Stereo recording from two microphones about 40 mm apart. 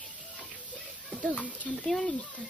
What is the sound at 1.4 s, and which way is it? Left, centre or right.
Speech, left.